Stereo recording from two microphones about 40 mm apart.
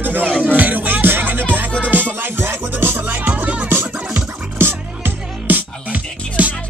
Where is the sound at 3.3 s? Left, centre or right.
Right.